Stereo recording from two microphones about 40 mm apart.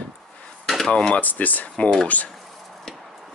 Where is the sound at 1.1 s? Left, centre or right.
Left.